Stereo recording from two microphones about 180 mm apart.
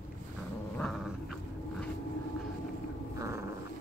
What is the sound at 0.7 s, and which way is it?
Dog, centre (ahead or behind).